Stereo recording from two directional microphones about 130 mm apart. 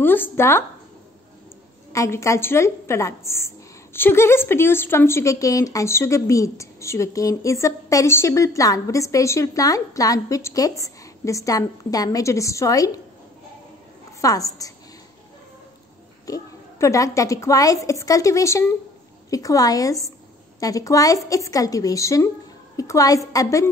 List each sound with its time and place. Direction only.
0.0 s speech: 15° left (ahead or behind)
1.9 s a woman's voice: 25° left (ahead or behind)
14.2 s a woman's voice: 25° left (ahead or behind)
16.3 s a woman's voice: 25° left (ahead or behind)